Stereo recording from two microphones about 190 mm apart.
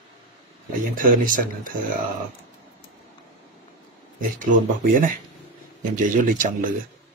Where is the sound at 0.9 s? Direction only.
45° right (ahead or behind).